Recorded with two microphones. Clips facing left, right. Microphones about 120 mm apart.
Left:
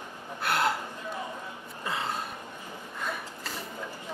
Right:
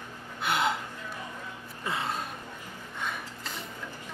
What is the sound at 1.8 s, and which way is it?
Gasp, centre (ahead or behind).